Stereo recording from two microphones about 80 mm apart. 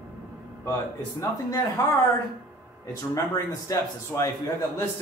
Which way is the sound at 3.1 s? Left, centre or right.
Left.